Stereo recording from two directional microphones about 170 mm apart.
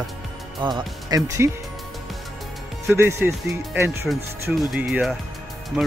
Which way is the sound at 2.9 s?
15° right (ahead or behind).